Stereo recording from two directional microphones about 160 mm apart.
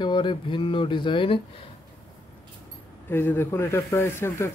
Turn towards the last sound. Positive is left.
turn(degrees=15)  # may be behind; listen again after turning